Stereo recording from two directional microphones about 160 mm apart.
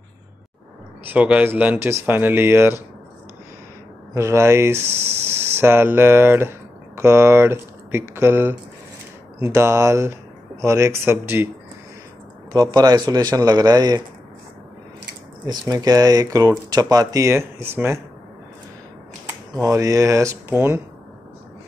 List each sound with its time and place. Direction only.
1.0 s speech: 10° right (ahead or behind)
4.1 s speech: 15° right (ahead or behind)
12.5 s speech: 25° right (ahead or behind)
15.7 s speech: 25° right (ahead or behind)
19.6 s speech: 20° right (ahead or behind)